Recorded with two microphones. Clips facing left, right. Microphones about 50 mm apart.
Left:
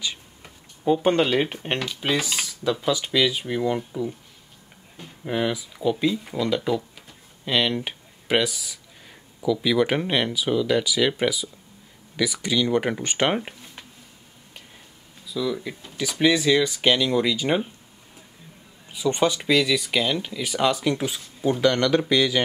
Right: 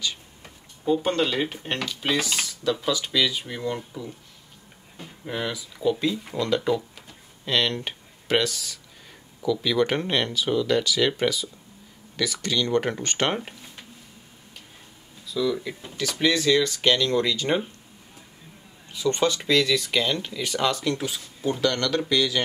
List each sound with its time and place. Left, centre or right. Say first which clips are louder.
0.0 s tick-tock: even; centre
1.0 s speech: left 4 dB; centre
5.2 s speech: left 5 dB; centre
15.2 s speech: right 1 dB; centre
18.9 s speech: left 1 dB; centre